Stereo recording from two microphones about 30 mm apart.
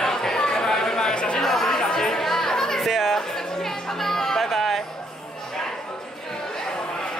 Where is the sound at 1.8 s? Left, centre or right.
Left.